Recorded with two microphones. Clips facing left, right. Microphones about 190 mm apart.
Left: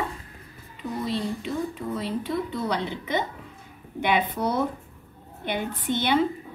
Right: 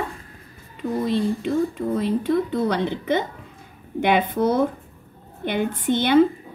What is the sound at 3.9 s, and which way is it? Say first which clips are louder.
Speech: right 5 dB; 50° right (ahead or behind).